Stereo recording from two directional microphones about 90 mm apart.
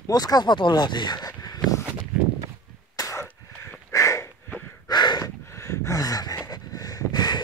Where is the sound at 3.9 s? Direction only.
35° left (ahead or behind).